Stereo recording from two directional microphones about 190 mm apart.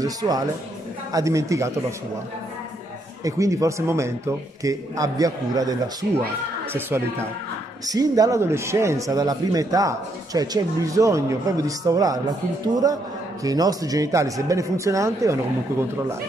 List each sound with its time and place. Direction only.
0.0 s a man's voice: 20° right (ahead or behind)
3.3 s a man's voice: 15° right (ahead or behind)
13.4 s a man's voice: 20° right (ahead or behind)